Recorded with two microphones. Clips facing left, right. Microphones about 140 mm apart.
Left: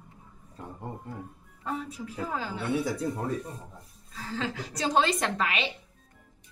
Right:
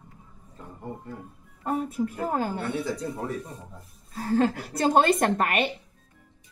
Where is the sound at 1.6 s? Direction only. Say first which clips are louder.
Right 8 dB; 50° right (ahead or behind).